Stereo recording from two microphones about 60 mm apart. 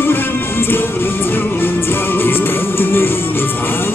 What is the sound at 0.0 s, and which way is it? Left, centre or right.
Music, left.